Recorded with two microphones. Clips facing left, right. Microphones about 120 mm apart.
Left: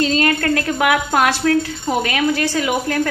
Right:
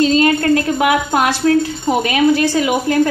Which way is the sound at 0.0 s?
20° right (ahead or behind).